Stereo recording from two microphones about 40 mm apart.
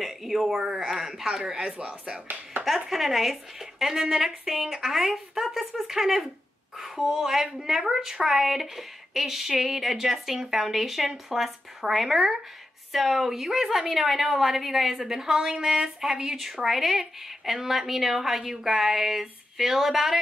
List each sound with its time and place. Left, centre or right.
0.0 s a woman's voice: centre
2.6 s a sound: right
2.9 s a woman's voice: centre